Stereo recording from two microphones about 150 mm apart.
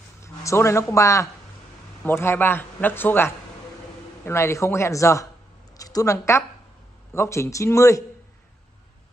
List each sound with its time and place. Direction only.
0.2 s a man's voice: 20° left (ahead or behind)